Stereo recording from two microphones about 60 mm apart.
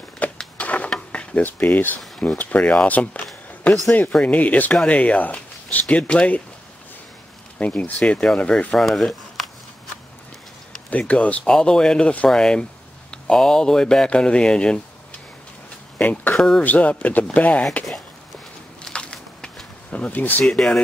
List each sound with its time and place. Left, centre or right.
0.2 s a sound: left
2.2 s speech: left
7.5 s speech: left
8.7 s speech: centre
10.9 s speech: left
11.4 s speech: centre
16.0 s speech: left
16.3 s speech: centre
16.6 s speech: left
18.8 s a sound: centre
20.5 s speech: centre